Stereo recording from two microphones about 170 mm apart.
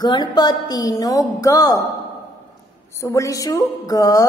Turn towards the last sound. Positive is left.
turn(degrees=20)  # may be behind; listen again after turning